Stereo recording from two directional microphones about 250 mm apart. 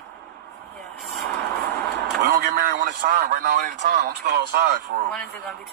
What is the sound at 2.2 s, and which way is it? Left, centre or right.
A man's voice, right.